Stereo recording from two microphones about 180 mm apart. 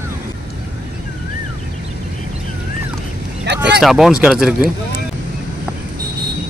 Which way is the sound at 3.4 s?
70° right (ahead or behind).